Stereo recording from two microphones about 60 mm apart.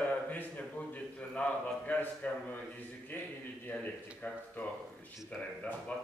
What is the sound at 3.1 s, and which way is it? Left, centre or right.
A man's voice, left.